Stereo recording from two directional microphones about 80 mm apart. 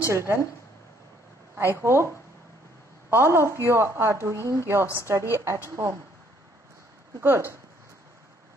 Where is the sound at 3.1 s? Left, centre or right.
Right.